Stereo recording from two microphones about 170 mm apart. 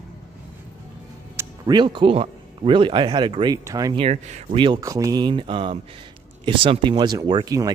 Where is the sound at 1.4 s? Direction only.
25° right (ahead or behind).